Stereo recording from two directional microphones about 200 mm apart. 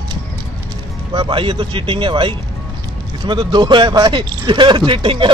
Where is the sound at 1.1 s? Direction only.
25° right (ahead or behind).